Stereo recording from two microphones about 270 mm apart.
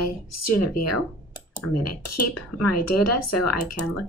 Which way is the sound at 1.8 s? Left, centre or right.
Left.